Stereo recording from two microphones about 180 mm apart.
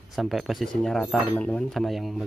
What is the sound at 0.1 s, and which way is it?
Speech, centre (ahead or behind).